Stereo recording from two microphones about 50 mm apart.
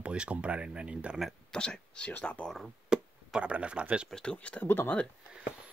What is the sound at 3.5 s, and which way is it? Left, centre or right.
Speech, right.